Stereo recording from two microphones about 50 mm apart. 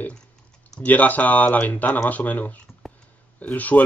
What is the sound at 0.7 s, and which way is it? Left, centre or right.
Speech, left.